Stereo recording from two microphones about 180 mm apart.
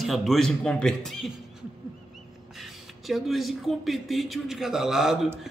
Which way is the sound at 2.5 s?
Centre (ahead or behind).